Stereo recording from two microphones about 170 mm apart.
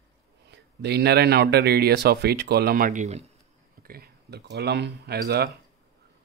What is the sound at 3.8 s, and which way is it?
Speech, 65° right (ahead or behind).